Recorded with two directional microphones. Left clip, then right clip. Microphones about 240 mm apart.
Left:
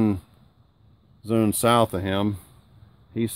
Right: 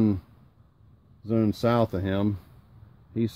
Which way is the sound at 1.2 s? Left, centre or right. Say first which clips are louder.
Left 4 dB; centre.